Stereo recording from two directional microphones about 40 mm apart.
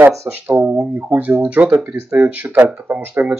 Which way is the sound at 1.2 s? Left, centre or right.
Right.